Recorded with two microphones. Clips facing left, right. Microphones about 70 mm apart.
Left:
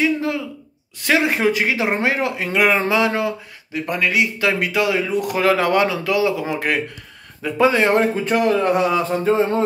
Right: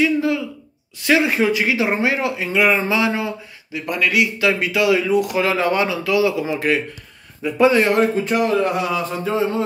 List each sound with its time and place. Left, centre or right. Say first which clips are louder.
0.0 s speech: right 2 dB; left
3.0 s a sound: left 1 dB; left
3.7 s speech: even; left
4.4 s speech: right 1 dB; left
7.5 s speech: right 1 dB; left